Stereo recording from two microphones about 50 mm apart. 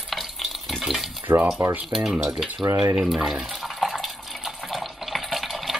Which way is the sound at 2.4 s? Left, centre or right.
Right.